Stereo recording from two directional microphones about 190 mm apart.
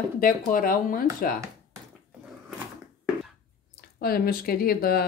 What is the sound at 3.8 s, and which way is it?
Speech, 50° left (ahead or behind).